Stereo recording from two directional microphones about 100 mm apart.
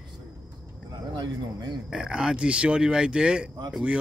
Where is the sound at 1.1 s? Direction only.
45° right (ahead or behind).